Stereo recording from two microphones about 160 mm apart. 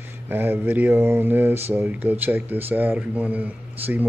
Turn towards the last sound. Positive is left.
turn(degrees=-10)  # may be behind; listen again after turning